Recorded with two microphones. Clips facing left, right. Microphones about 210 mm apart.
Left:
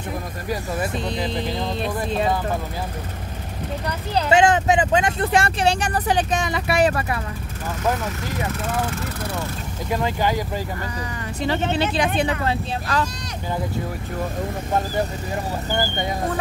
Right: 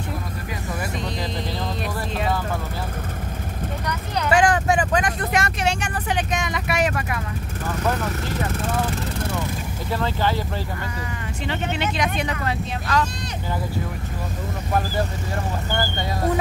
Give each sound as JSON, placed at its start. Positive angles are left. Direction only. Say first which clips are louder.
{"t": 3.8, "sound": "vehicle", "louder": "left 3 dB", "side_deg": 30}
{"t": 9.8, "sound": "speech", "louder": "left 2 dB", "side_deg": 15}
{"t": 11.4, "sound": "speech", "louder": "left 4 dB", "side_deg": 35}
{"t": 15.7, "sound": "speech", "louder": "left 3 dB", "side_deg": 15}